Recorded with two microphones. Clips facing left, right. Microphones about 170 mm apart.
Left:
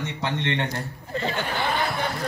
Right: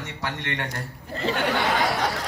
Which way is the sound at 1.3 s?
80° right.